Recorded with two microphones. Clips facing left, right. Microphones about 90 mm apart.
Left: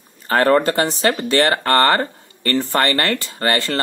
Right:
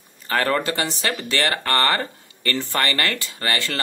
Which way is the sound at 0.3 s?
35° left (ahead or behind).